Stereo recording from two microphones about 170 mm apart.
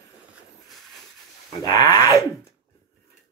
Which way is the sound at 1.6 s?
25° left (ahead or behind).